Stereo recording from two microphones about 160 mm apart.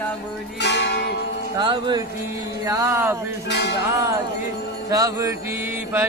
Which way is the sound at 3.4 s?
90° left.